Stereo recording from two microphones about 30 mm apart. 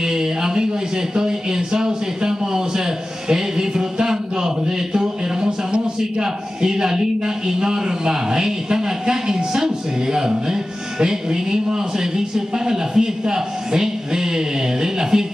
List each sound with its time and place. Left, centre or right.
0.0 s a man's voice: centre
4.9 s a sound: right
6.1 s a man's voice: right